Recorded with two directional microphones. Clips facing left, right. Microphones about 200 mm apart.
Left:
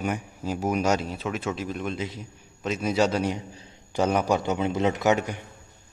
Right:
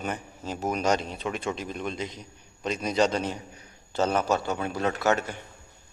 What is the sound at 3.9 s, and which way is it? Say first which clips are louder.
Speech: left 2 dB; 15° left (ahead or behind).